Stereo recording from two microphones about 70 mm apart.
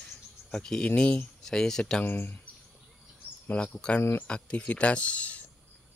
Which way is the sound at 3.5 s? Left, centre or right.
Centre.